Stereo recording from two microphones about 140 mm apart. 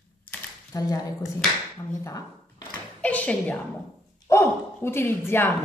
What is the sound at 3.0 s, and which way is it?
Speech, 10° left (ahead or behind).